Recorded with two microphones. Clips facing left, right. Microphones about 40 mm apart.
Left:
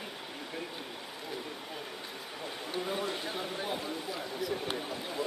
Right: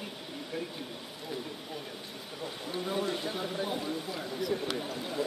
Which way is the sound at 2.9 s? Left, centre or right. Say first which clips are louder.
Right 5 dB; centre.